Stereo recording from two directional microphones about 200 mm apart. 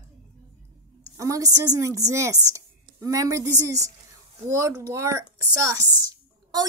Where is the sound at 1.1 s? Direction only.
15° right (ahead or behind).